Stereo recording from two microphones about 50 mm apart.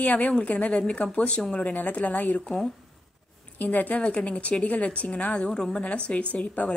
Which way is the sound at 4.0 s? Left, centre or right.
Left.